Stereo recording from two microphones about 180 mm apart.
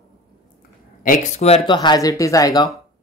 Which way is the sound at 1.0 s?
45° left (ahead or behind).